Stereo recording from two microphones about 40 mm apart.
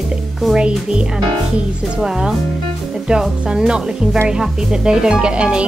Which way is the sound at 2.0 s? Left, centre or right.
Centre.